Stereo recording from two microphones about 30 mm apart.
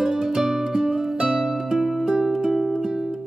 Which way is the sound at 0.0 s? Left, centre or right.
Centre.